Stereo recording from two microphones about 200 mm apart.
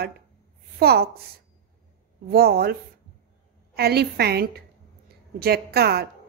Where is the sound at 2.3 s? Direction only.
50° right (ahead or behind).